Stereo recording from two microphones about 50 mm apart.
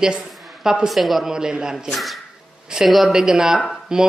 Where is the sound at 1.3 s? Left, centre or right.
Centre.